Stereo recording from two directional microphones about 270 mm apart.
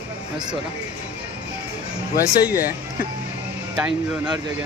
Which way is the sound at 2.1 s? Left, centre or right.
Left.